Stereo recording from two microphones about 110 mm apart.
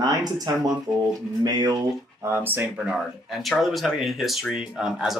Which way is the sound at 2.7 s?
5° right (ahead or behind).